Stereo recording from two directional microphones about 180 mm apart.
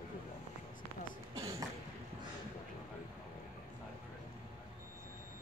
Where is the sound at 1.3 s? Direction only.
15° right (ahead or behind).